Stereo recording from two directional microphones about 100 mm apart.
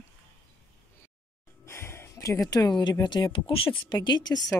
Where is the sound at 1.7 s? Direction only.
25° left (ahead or behind); by 3.4 s 50° left (ahead or behind).